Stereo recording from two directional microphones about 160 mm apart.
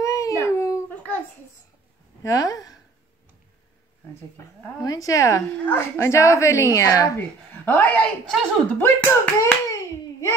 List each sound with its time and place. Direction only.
0.0 s dog: 20° left (ahead or behind)
2.2 s a woman's voice: 20° left (ahead or behind)
4.8 s speech: 20° left (ahead or behind)